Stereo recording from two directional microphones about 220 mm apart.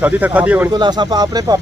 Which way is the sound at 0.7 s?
20° right (ahead or behind).